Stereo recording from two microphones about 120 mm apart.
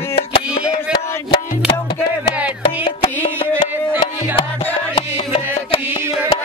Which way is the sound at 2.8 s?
55° left (ahead or behind).